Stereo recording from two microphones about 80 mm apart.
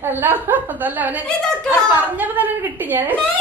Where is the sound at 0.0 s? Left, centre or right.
Right.